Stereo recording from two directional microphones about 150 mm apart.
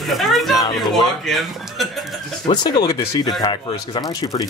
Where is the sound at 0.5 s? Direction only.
25° left (ahead or behind).